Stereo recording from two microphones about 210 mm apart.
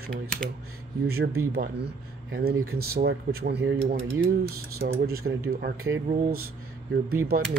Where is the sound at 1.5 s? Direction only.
50° right (ahead or behind).